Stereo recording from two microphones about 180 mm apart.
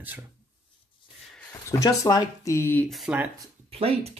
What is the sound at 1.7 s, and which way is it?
Speech, 20° left (ahead or behind).